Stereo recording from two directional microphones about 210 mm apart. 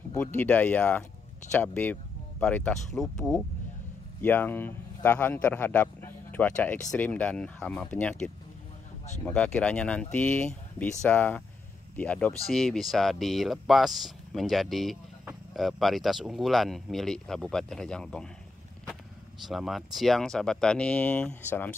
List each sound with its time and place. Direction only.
0.1 s speech: 10° left (ahead or behind)
19.4 s speech: centre (ahead or behind)